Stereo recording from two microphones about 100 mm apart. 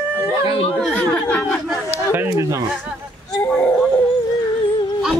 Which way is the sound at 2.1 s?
25° right (ahead or behind).